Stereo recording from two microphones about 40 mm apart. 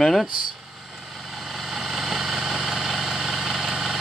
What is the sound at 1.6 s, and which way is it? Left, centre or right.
Vehicle, centre.